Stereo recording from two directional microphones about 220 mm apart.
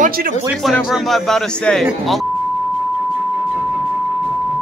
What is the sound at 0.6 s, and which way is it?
Speech, centre (ahead or behind).